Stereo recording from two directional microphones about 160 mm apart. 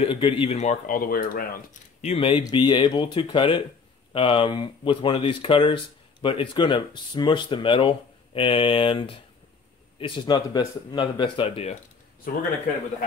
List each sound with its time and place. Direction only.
0.0 s speech: 35° left (ahead or behind); by 1.8 s 60° left (ahead or behind)
2.0 s speech: 40° left (ahead or behind)
12.3 s speech: 60° left (ahead or behind)